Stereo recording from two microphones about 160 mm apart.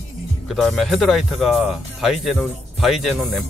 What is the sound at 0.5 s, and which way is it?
Speech, centre (ahead or behind).